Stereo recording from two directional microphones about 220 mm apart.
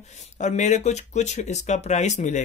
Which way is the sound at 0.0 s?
30° left (ahead or behind).